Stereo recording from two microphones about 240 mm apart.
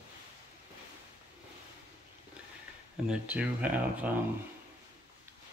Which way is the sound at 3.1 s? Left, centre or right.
Centre.